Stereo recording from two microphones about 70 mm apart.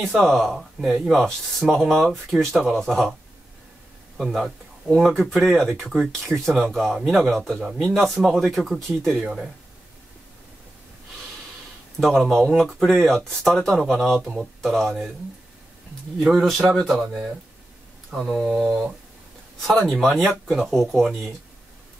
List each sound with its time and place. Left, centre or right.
0.0 s speech: centre
4.2 s speech: centre
12.0 s speech: centre
16.2 s speech: centre
18.1 s speech: centre
19.6 s speech: centre